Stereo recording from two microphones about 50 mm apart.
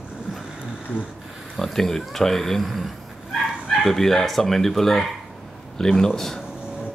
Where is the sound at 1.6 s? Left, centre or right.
Centre.